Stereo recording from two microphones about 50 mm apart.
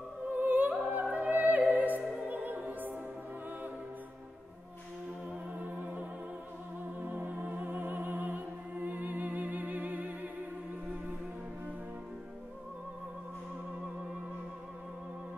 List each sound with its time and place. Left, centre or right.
0.3 s opera: right
0.7 s music: right
5.5 s music: right